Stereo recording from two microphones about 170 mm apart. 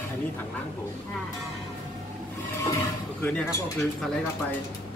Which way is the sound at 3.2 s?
10° left (ahead or behind).